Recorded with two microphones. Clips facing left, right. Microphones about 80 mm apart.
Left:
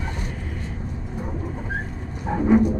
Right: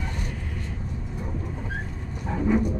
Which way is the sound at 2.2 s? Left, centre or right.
Left.